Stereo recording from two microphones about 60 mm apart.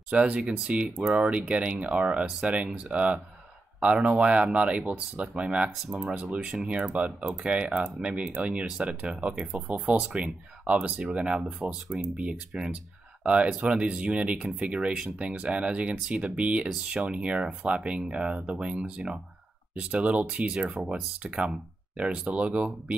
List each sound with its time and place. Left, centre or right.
0.1 s speech: right